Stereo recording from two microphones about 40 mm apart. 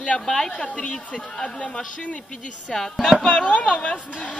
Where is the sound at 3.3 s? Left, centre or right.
Left.